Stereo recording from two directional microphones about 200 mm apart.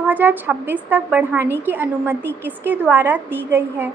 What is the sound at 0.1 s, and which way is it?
A woman's voice, 10° right (ahead or behind).